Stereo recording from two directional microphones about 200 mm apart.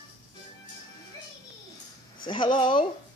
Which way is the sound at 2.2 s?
25° left (ahead or behind).